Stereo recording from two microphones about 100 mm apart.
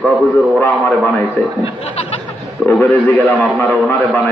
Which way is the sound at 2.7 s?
15° left (ahead or behind).